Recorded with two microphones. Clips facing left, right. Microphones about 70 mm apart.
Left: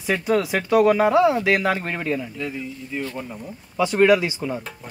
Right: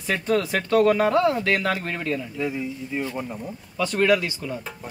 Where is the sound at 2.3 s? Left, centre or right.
Centre.